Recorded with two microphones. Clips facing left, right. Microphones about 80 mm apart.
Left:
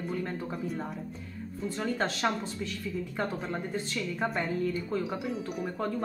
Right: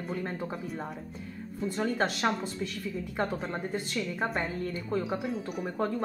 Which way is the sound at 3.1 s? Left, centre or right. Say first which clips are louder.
Right 3 dB; centre.